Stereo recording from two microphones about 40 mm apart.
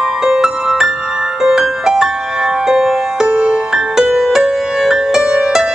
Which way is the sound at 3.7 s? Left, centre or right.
Centre.